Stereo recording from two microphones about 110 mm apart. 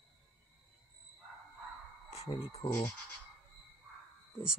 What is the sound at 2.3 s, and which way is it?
Speech, 70° left (ahead or behind).